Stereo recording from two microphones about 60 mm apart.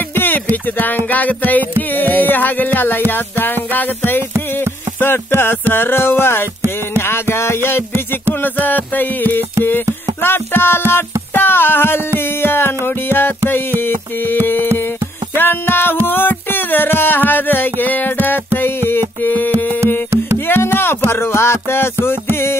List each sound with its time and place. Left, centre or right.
0.1 s music: left
8.4 s music: left